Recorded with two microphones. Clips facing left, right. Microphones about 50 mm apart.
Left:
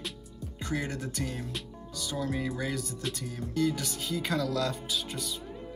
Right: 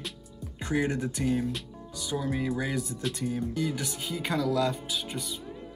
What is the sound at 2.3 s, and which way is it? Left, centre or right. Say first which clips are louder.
Speech: right 4 dB; centre.